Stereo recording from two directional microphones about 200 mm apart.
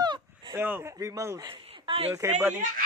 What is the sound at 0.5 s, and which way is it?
Speech, 10° right (ahead or behind).